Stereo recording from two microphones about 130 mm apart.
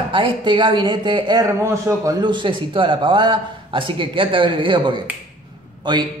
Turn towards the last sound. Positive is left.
turn(degrees=-35)  # may be behind; listen again after turning